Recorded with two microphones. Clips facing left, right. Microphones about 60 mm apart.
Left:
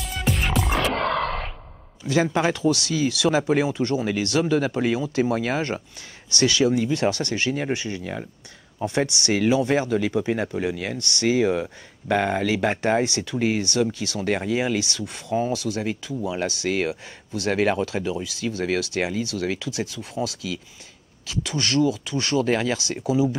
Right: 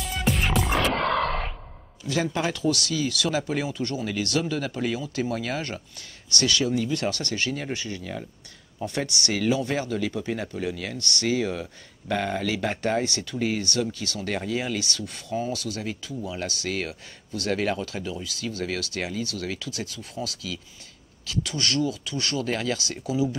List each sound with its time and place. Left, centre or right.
0.0 s music: centre
2.0 s speech: left